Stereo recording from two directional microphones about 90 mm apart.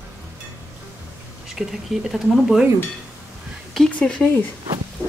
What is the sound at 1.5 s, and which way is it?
A woman's voice, 5° right (ahead or behind).